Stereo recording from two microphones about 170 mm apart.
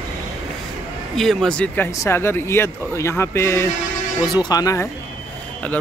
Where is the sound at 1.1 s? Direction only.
Centre (ahead or behind); by 4.8 s 20° left (ahead or behind).